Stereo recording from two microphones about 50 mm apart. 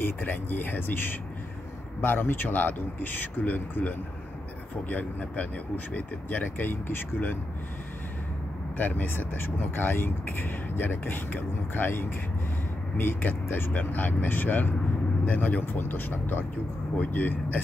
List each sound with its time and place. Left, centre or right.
0.0 s speech: left
8.7 s speech: left